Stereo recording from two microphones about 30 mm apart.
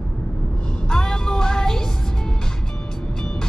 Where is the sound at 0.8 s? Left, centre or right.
Left.